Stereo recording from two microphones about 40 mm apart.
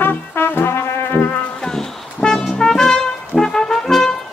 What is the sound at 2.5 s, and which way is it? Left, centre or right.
Trumpet, centre.